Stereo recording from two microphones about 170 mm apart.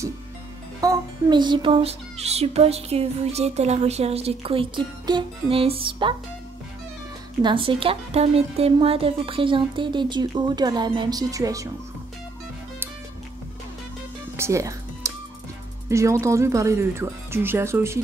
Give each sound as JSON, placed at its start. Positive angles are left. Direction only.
{"t": 0.7, "sound": "a child's voice", "side_deg": -25}
{"t": 7.4, "sound": "a woman's voice", "side_deg": -30}
{"t": 14.3, "sound": "music", "side_deg": -15}
{"t": 15.9, "sound": "speech", "side_deg": -15}